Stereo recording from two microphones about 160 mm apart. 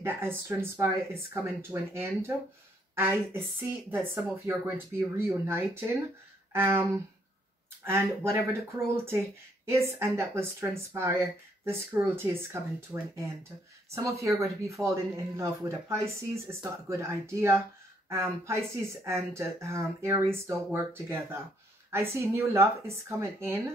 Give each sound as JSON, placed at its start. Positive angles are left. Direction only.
{"t": 0.0, "sound": "speech", "side_deg": -15}
{"t": 13.9, "sound": "speech", "side_deg": -20}